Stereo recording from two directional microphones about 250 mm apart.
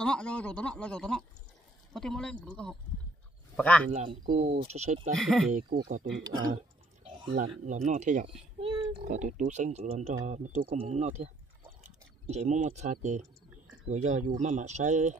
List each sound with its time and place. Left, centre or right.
0.0 s speech: centre
3.9 s speech: right
5.1 s speech: centre
5.7 s speech: right
6.2 s speech: centre
7.4 s speech: right
12.3 s speech: right